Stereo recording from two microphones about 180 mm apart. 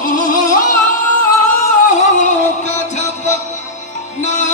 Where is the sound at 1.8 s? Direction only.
40° left (ahead or behind).